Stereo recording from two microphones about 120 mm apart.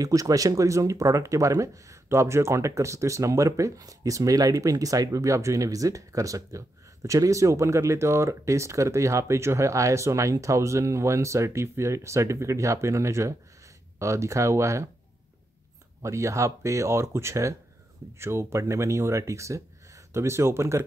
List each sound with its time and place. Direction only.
0.0 s speech: 30° right (ahead or behind)
16.0 s speech: 25° right (ahead or behind)